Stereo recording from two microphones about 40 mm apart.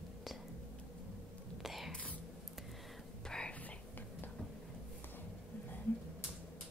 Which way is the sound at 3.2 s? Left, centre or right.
Centre.